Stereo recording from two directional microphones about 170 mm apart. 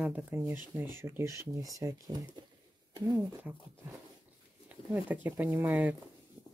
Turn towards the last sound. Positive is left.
turn(degrees=-10)  # may be behind; listen again after turning